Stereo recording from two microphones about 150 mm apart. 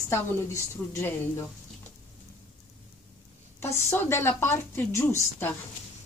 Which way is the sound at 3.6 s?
15° left (ahead or behind).